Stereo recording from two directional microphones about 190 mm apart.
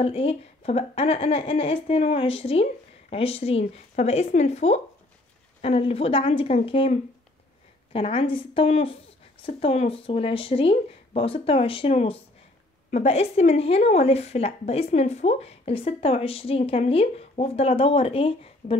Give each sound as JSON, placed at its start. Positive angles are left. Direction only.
{"t": 0.0, "sound": "speech", "side_deg": 30}